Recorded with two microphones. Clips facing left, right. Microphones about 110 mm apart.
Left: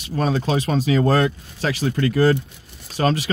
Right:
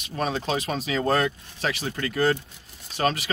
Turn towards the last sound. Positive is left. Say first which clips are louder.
# left 4 dB
turn(degrees=35)  # may be behind; listen again after turning